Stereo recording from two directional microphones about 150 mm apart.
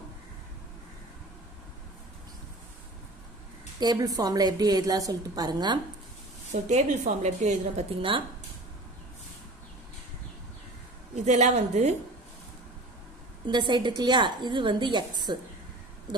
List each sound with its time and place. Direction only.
3.8 s a woman's voice: 25° right (ahead or behind)
6.5 s a woman's voice: 50° right (ahead or behind)
11.1 s a woman's voice: 50° right (ahead or behind)
13.5 s a woman's voice: 30° right (ahead or behind)